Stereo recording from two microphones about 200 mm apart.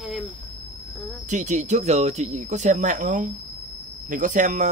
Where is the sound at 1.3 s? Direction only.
35° right (ahead or behind).